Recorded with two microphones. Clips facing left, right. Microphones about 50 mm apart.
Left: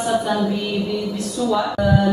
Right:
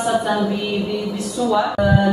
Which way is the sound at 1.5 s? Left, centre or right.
Centre.